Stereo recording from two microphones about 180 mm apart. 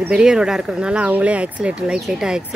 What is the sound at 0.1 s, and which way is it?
Speech, 5° right (ahead or behind).